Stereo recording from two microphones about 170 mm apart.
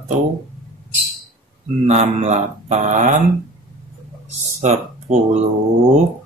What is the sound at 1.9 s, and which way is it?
Speech, 40° right (ahead or behind).